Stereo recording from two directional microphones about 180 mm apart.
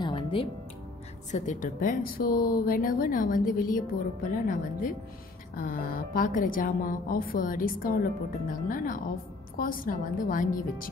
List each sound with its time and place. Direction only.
0.0 s music: 30° left (ahead or behind)
1.3 s speech: 45° left (ahead or behind)